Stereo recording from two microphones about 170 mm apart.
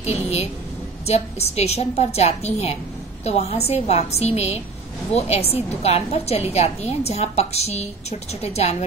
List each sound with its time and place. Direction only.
0.0 s a woman's voice: 40° left (ahead or behind)